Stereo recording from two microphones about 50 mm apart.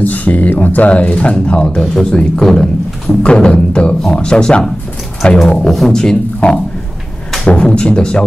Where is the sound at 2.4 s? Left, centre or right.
Centre.